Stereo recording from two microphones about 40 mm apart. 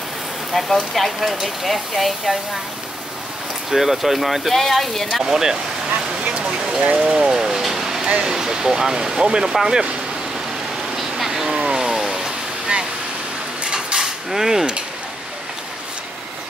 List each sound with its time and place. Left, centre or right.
0.5 s speech: centre
3.7 s speech: centre
5.2 s speech: centre
6.4 s a sound: centre
6.8 s speech: right
7.1 s vehicle: centre
8.2 s speech: centre
11.0 s a sound: centre
13.7 s mechanisms: centre